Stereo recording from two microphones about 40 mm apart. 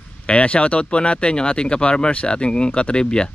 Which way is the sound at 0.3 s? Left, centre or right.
Left.